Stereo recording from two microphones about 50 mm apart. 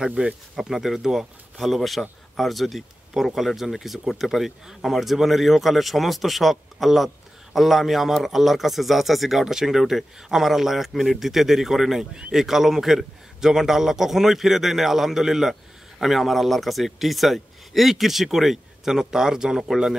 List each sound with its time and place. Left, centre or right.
0.2 s speech: right
0.6 s a man's voice: centre